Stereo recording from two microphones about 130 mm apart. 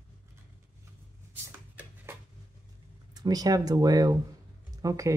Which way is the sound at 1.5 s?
15° right (ahead or behind).